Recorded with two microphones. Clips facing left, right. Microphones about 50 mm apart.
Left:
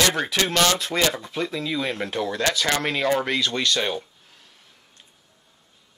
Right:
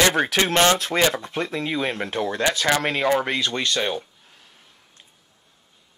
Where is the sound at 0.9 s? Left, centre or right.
Centre.